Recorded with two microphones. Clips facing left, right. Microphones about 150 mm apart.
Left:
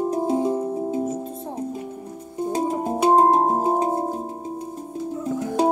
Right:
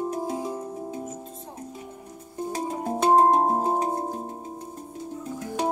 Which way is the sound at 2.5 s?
30° left (ahead or behind).